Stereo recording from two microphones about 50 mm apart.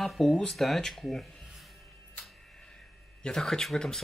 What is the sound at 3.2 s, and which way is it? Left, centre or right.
Speech, centre.